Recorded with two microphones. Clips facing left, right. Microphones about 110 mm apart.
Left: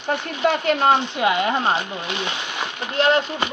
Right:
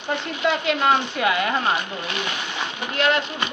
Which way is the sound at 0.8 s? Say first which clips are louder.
Left 1 dB; 25° left (ahead or behind).